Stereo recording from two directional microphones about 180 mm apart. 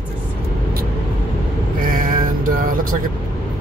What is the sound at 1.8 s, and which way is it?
Music, 50° right (ahead or behind).